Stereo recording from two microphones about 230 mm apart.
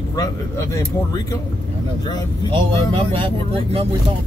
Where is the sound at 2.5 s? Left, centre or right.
Right.